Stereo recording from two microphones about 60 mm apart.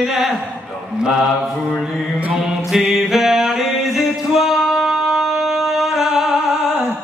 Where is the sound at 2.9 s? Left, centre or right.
Centre.